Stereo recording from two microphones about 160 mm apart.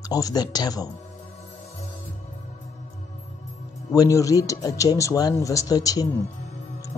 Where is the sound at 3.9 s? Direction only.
20° left (ahead or behind).